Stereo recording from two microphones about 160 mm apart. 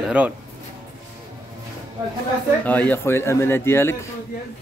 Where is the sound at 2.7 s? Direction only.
10° left (ahead or behind).